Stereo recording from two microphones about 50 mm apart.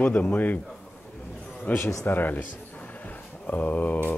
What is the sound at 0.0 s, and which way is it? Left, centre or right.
Speech, left.